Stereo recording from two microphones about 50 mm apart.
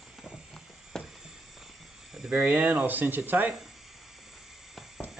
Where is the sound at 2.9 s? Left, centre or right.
Right.